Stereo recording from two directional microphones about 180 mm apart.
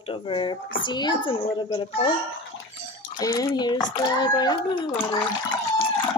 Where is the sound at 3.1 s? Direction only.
20° left (ahead or behind).